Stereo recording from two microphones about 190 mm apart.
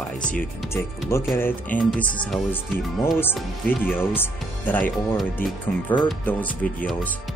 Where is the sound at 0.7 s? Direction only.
15° left (ahead or behind).